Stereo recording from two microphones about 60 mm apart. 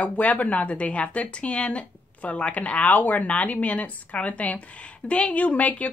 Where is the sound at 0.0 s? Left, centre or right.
Left.